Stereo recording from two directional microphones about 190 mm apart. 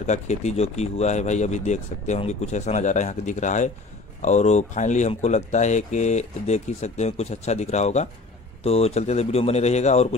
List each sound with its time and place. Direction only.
0.0 s speech: 35° left (ahead or behind)